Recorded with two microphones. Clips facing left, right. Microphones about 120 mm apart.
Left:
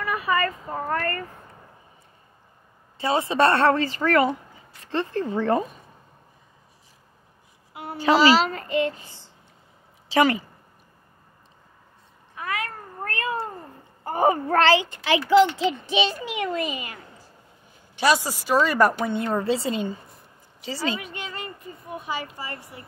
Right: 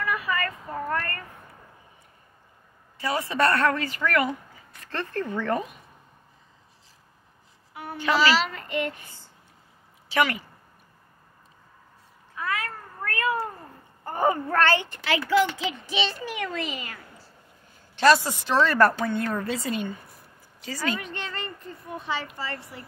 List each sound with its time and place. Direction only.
0.0 s speech: 30° left (ahead or behind)
3.0 s a woman's voice: 25° left (ahead or behind)
7.7 s a child's voice: 30° left (ahead or behind)
13.0 s cat: 25° left (ahead or behind)
14.0 s a child's voice: 15° left (ahead or behind)
14.5 s a child's voice: 90° left
15.0 s a woman's voice: 20° left (ahead or behind)
21.0 s a woman's voice: 5° left (ahead or behind)